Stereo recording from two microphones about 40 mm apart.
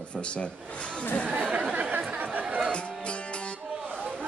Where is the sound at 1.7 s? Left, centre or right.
Right.